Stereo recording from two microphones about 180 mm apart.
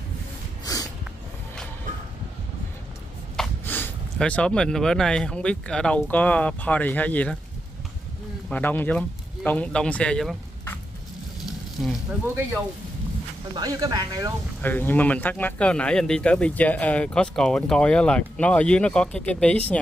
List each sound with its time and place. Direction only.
3.3 s speech: 10° left (ahead or behind)
8.5 s speech: 10° left (ahead or behind)
13.6 s speech: 20° right (ahead or behind)
14.6 s speech: 10° left (ahead or behind)